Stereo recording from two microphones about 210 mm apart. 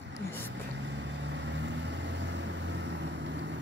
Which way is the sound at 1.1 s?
55° right (ahead or behind).